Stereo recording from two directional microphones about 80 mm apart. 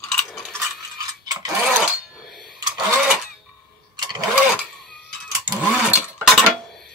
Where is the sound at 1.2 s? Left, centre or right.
Right.